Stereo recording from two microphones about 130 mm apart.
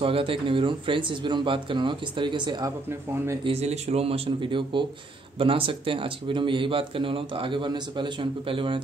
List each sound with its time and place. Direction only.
0.0 s speech: 45° right (ahead or behind)
2.9 s speech: 20° right (ahead or behind)
3.4 s speech: 55° right (ahead or behind)